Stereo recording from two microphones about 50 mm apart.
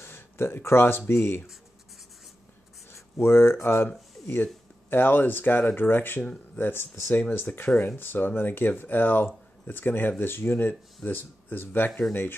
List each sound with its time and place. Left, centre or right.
0.0 s speech: left
2.9 s speech: left
6.2 s speech: left
6.6 s speech: left
7.2 s speech: left